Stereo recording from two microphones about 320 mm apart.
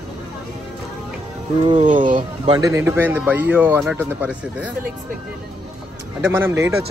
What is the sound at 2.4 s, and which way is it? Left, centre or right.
A man's voice, centre.